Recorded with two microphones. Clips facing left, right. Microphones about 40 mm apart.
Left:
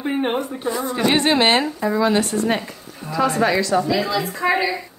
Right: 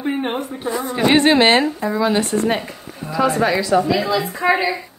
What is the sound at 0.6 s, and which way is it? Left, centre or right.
Speech, right.